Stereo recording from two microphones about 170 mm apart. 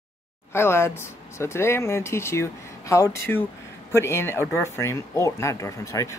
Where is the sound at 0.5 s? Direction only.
15° left (ahead or behind).